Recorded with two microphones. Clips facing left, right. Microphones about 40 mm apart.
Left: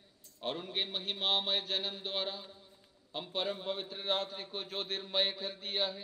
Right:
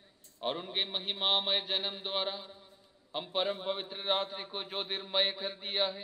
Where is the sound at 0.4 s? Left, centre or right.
Centre.